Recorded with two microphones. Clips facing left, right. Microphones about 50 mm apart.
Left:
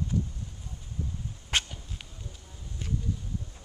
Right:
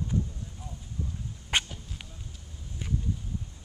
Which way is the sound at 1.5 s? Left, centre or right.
Centre.